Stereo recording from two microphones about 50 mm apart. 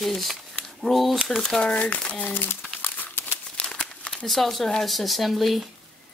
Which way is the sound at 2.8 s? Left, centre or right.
Left.